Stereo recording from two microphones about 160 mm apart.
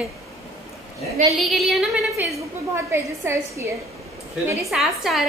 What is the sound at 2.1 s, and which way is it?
A woman's voice, 15° right (ahead or behind).